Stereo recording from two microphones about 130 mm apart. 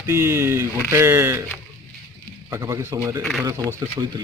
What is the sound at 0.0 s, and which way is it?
Speech, 20° right (ahead or behind).